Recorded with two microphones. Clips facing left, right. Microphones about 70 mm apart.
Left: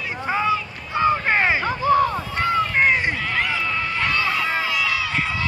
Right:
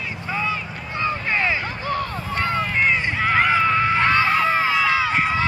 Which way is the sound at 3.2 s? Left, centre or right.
Right.